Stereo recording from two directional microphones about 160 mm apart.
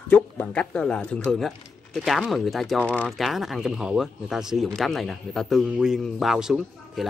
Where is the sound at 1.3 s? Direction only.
Centre (ahead or behind).